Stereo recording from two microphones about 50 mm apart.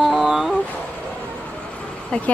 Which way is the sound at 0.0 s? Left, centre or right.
Centre.